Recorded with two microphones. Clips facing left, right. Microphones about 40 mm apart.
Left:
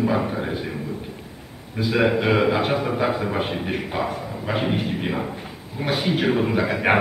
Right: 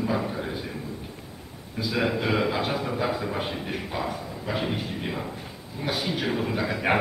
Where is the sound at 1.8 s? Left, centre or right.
Left.